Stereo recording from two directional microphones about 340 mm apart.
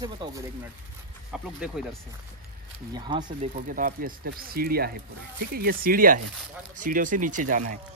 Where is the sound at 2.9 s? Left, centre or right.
Centre.